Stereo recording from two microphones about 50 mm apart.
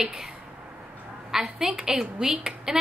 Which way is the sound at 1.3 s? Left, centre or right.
Centre.